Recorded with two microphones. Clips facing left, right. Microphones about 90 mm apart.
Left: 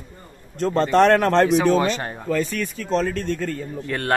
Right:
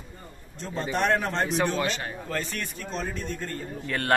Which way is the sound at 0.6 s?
80° left.